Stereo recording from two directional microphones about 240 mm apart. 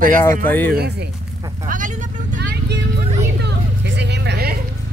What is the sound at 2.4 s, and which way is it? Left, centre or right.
Vehicle, right.